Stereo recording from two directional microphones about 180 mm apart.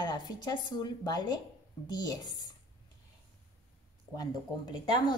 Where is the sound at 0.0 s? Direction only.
20° left (ahead or behind).